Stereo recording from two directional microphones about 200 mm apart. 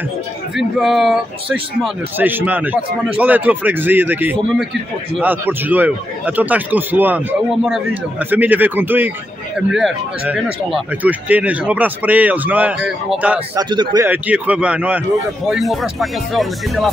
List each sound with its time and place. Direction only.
0.6 s speech: centre (ahead or behind)
13.6 s speech: 20° right (ahead or behind)
14.0 s a man's voice: 10° right (ahead or behind)